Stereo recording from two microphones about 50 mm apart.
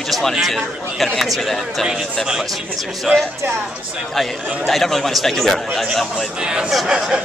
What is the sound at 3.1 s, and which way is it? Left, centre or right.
Speech, centre.